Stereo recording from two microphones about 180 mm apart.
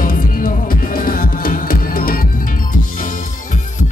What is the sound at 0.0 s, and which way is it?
Music, 50° left (ahead or behind).